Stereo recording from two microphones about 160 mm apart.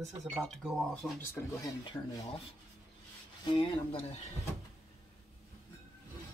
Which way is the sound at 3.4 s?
30° left (ahead or behind).